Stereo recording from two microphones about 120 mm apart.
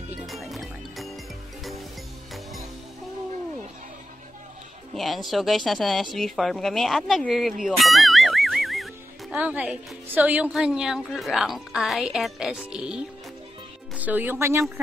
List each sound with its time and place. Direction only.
0.3 s music: centre (ahead or behind)
4.9 s a woman's voice: centre (ahead or behind)
7.6 s music: centre (ahead or behind)
9.4 s a woman's voice: 10° right (ahead or behind)